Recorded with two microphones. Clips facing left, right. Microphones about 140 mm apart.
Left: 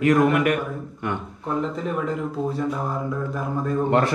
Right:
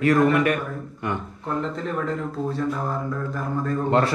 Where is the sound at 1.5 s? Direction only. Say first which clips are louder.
Left 2 dB; 5° left (ahead or behind).